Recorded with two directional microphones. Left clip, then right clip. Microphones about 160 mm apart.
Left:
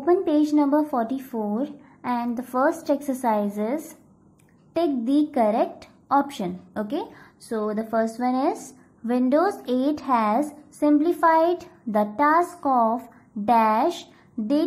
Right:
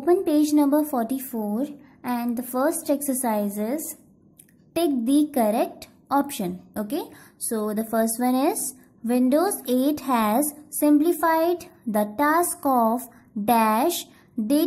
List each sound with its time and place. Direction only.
0.0 s a woman's voice: 35° right (ahead or behind)